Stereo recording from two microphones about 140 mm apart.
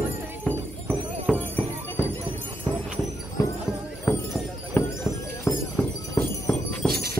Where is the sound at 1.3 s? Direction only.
5° left (ahead or behind).